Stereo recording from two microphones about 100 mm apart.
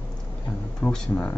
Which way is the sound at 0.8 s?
20° left (ahead or behind).